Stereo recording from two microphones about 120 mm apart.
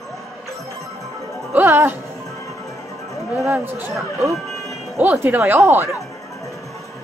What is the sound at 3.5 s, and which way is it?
Speech, 15° right (ahead or behind).